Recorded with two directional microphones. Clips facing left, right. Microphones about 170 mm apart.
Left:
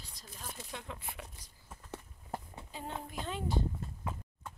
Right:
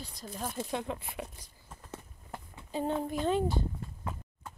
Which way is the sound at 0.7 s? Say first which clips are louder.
Right 9 dB; 25° right (ahead or behind).